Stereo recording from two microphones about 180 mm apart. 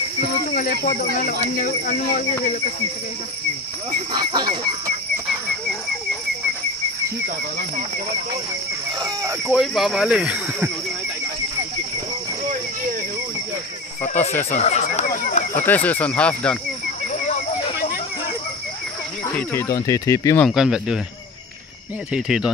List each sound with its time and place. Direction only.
0.6 s speech: 50° left (ahead or behind)
4.1 s speech: 25° right (ahead or behind)
9.0 s speech: 20° right (ahead or behind)
9.5 s speech: centre (ahead or behind)
14.5 s speech: 40° left (ahead or behind)
15.6 s speech: 10° left (ahead or behind)
19.3 s speech: 15° left (ahead or behind)
20.4 s speech: 5° right (ahead or behind)
22.1 s speech: 5° right (ahead or behind)